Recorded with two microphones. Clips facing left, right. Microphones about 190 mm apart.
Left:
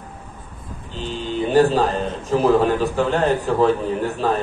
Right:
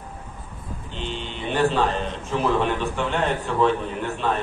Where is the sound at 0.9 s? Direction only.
40° left (ahead or behind).